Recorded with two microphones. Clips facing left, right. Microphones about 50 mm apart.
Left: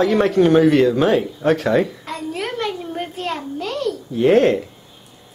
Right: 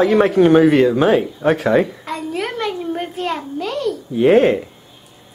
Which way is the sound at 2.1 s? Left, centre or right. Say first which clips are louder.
Right 4 dB; centre.